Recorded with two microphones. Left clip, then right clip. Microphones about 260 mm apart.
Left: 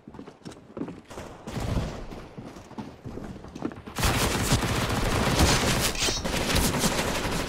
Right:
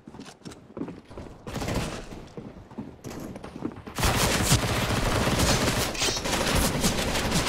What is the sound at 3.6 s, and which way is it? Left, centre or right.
Fusillade, centre.